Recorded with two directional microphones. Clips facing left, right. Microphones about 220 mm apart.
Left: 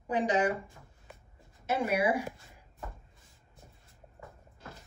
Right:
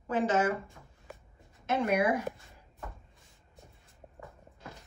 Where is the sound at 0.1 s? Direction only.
15° left (ahead or behind).